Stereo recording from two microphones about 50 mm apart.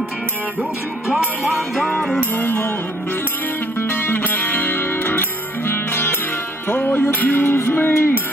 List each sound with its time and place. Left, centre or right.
1.2 s music: right
1.8 s music: centre
2.1 s music: left
3.9 s music: left
7.4 s music: left